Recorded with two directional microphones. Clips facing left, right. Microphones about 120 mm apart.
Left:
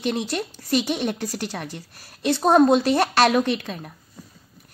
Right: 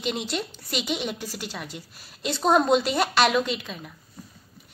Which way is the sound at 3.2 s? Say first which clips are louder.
Left 3 dB; 50° left (ahead or behind).